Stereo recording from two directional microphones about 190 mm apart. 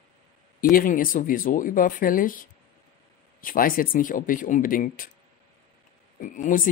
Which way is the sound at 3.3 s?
50° left (ahead or behind).